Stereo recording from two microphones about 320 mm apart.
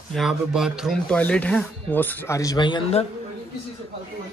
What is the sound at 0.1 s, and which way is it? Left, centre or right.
Speech, centre.